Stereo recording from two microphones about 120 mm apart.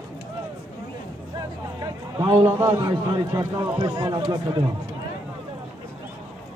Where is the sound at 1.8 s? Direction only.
40° right (ahead or behind).